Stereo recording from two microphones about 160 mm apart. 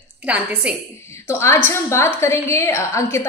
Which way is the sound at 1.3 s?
15° left (ahead or behind).